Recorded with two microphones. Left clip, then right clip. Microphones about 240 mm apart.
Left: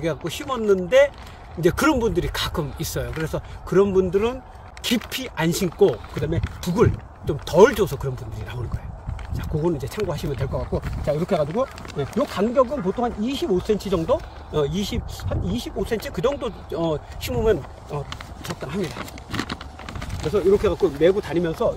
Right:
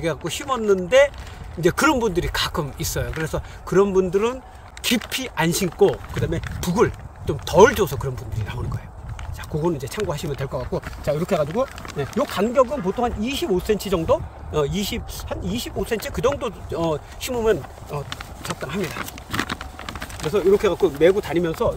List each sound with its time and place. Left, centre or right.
0.3 s speech: centre
6.2 s speech: left
6.6 s speech: centre
18.4 s a sound: centre
20.2 s speech: centre